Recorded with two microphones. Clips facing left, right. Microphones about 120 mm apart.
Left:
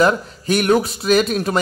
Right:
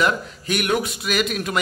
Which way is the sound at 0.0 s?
35° left (ahead or behind).